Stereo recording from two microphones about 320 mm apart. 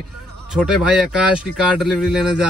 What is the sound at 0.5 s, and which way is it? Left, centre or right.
Speech, centre.